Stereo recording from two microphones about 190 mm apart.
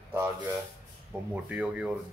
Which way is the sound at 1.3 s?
5° right (ahead or behind).